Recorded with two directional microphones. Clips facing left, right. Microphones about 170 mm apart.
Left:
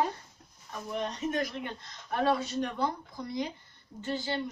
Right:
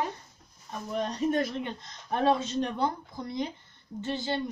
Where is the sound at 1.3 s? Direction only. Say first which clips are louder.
Right 4 dB; 25° right (ahead or behind).